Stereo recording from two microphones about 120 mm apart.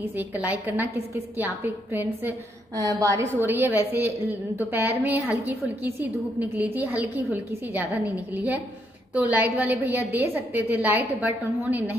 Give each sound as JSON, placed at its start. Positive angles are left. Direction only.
{"t": 0.2, "sound": "a woman's voice", "side_deg": -15}
{"t": 3.3, "sound": "a woman's voice", "side_deg": -15}